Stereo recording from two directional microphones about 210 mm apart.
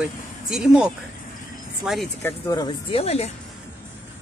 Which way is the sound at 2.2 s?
10° left (ahead or behind).